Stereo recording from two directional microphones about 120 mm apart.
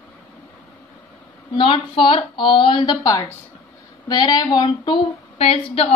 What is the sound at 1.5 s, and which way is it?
Speech, 45° left (ahead or behind).